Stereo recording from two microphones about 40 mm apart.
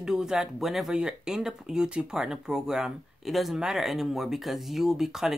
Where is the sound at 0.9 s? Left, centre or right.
Centre.